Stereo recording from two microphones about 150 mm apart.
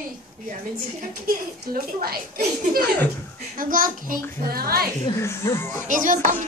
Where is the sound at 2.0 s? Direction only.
80° right.